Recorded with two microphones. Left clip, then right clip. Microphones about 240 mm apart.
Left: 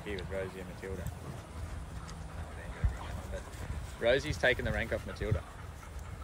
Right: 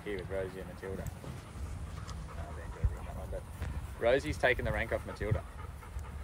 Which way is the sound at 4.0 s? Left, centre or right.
Right.